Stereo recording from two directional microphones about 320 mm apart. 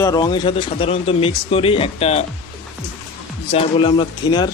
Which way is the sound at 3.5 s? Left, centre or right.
Centre.